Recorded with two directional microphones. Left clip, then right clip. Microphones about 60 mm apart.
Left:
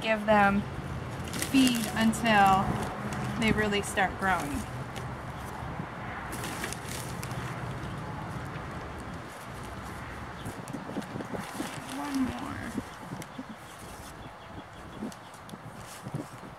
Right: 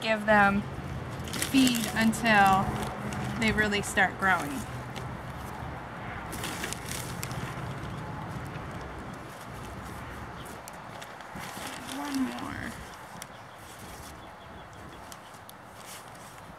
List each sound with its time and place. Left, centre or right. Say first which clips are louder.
0.0 s speech: right 1 dB; right; by 3.3 s centre
3.3 s speech: right 1 dB; centre
4.4 s zipper: even; centre
6.3 s a sound: right 3 dB; centre
11.9 s livestock: right 1 dB; centre